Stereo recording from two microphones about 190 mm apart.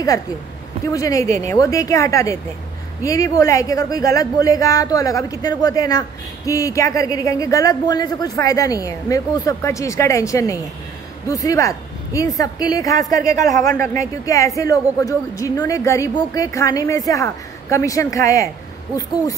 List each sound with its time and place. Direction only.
0.9 s a man's voice: 15° left (ahead or behind)